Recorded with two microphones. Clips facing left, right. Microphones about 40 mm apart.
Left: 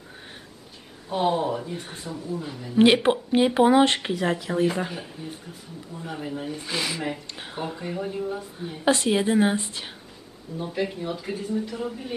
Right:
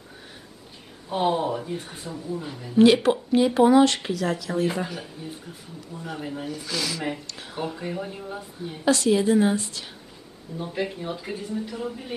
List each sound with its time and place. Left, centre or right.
1.0 s speech: centre
2.8 s speech: left
4.7 s speech: centre
5.9 s speech: centre
6.5 s speech: left
7.2 s a sound: left
7.5 s speech: centre
8.8 s speech: left
10.6 s speech: centre